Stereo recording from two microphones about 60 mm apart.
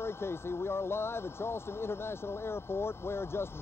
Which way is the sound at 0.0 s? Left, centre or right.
Left.